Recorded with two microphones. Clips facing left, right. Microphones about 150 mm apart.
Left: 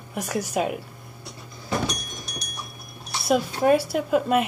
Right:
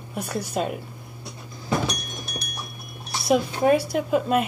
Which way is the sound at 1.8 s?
55° right (ahead or behind).